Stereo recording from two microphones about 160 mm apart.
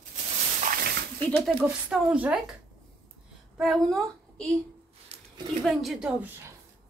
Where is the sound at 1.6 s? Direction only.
5° right (ahead or behind).